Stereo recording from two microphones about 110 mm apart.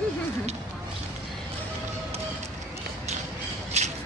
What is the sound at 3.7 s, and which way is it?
Rattle, 90° right.